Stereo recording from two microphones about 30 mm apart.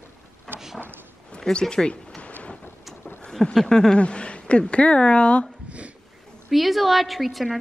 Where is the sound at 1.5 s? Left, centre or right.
Left.